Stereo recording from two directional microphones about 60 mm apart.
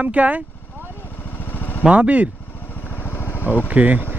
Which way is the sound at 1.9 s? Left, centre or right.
Right.